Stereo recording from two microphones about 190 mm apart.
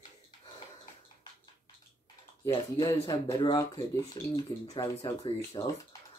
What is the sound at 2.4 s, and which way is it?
Speech, 20° left (ahead or behind).